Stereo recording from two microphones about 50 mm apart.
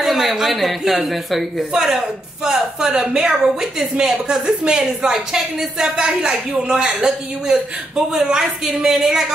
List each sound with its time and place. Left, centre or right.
0.0 s a woman's voice: centre